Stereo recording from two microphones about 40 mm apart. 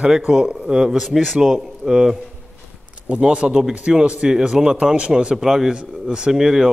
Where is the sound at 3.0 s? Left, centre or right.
Right; by 5.7 s centre.